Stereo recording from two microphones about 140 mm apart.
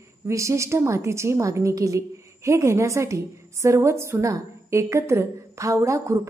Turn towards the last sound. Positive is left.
turn(degrees=-20)  # may be behind; listen again after turning